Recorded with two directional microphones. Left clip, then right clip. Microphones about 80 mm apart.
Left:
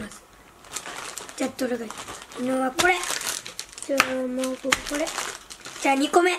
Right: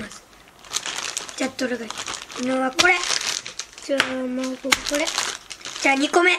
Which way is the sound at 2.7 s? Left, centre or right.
Centre.